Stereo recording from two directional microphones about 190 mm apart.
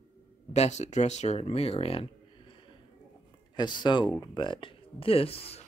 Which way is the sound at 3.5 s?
25° left (ahead or behind).